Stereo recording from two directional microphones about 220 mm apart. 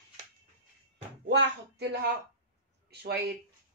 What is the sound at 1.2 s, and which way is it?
Speech, 50° right (ahead or behind).